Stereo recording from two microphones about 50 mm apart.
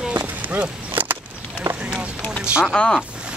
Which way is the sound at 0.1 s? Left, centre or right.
Right.